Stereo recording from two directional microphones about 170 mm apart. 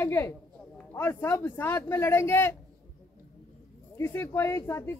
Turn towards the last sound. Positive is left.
turn(degrees=15)  # may be behind; listen again after turning